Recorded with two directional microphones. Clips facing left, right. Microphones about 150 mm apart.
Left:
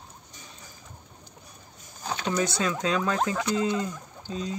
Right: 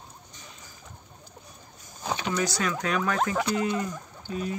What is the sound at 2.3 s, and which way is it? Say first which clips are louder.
Speech: left 3 dB; 25° left (ahead or behind).